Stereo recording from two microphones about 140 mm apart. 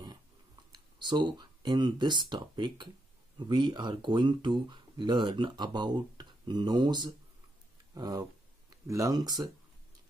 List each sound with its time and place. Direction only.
0.7 s speech: 35° right (ahead or behind)